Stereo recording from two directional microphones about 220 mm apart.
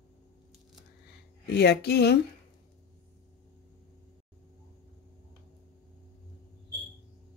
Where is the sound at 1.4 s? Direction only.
50° left (ahead or behind).